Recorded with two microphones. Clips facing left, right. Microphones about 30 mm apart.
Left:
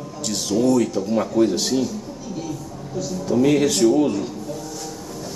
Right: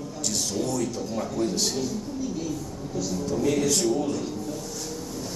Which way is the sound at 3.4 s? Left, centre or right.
Left.